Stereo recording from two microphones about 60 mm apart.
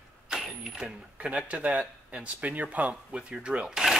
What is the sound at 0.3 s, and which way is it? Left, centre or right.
Cash register, centre.